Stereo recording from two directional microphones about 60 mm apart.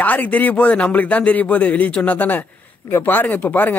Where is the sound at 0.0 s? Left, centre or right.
Left.